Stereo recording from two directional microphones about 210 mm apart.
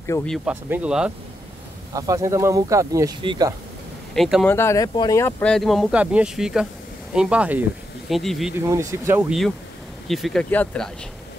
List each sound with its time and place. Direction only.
0.3 s speech: 5° right (ahead or behind)
2.0 s speech: 15° right (ahead or behind)
4.1 s speech: centre (ahead or behind)
4.6 s speech: 15° left (ahead or behind)
8.5 s speech: 15° right (ahead or behind)
10.0 s speech: centre (ahead or behind)